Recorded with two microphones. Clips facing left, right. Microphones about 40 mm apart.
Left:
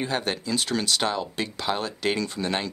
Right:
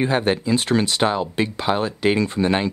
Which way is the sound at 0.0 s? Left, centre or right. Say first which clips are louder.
Right 8 dB; right.